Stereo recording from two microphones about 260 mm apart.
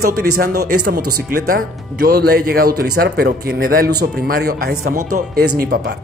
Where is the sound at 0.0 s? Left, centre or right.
Right.